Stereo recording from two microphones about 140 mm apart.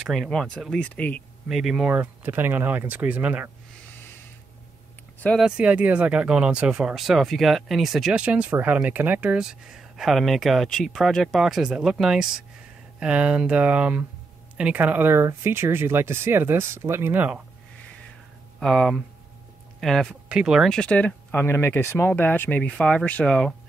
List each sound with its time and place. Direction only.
0.0 s speech: centre (ahead or behind)
1.5 s speech: 5° right (ahead or behind)
5.4 s speech: 10° right (ahead or behind)
18.6 s speech: 5° left (ahead or behind)